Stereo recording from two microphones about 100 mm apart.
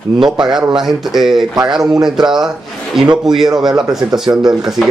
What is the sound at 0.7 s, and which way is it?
Speech, 5° right (ahead or behind).